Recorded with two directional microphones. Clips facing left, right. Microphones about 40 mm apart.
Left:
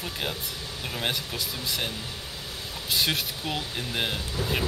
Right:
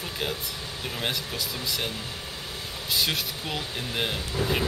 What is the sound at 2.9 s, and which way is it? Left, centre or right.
Speech, centre.